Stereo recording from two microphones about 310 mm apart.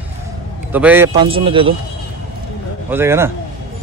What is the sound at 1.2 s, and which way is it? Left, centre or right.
Speech, centre.